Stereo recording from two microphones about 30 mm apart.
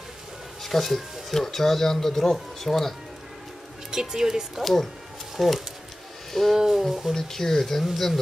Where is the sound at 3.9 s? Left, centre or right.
Centre.